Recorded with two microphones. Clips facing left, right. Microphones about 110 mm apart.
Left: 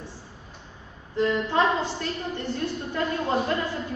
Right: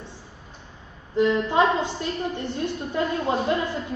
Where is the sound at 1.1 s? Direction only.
20° right (ahead or behind).